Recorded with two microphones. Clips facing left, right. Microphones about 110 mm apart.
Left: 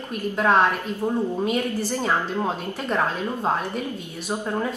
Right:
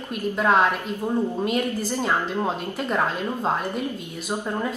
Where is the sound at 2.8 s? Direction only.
10° right (ahead or behind).